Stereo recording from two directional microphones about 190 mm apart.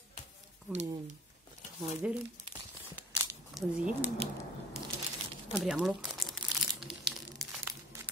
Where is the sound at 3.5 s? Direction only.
5° right (ahead or behind).